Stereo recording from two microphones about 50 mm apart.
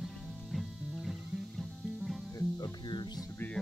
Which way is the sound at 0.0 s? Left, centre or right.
Centre.